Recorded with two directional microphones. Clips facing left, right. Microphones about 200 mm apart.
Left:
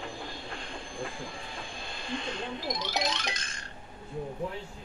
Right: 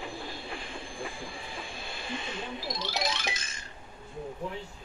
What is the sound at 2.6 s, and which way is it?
Music, 20° left (ahead or behind).